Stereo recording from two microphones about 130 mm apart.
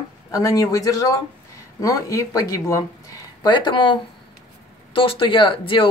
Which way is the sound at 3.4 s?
35° left (ahead or behind).